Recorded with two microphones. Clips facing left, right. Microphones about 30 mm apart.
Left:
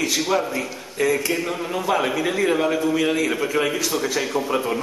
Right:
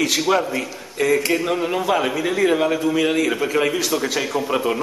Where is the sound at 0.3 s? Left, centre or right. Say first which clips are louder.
Right 1 dB; right.